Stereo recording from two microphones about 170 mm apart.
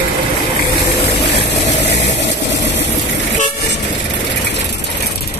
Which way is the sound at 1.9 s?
40° left (ahead or behind).